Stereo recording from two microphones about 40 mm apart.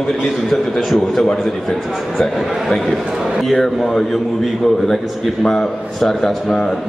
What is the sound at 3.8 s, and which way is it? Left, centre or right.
A man's voice, centre.